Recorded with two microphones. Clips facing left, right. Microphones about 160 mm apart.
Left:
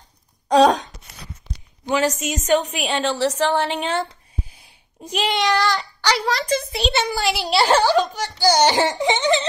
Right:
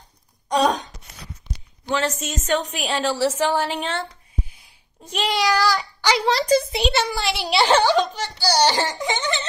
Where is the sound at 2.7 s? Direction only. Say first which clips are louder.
Left 1 dB; centre (ahead or behind).